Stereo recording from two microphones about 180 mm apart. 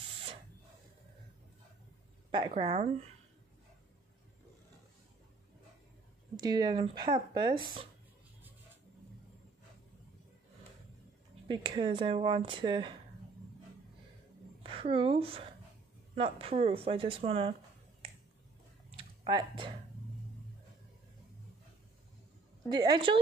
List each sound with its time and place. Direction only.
2.3 s speech: 30° right (ahead or behind)
6.3 s speech: 25° right (ahead or behind)
11.4 s speech: 25° right (ahead or behind)
14.6 s a woman's voice: 30° right (ahead or behind)
18.9 s typing: 30° right (ahead or behind)
22.7 s speech: 25° right (ahead or behind)